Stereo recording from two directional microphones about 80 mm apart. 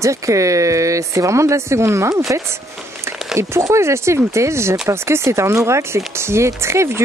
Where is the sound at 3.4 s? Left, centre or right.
Right.